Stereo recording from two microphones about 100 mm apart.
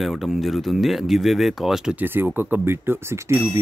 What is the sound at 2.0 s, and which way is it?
Speech, 20° right (ahead or behind).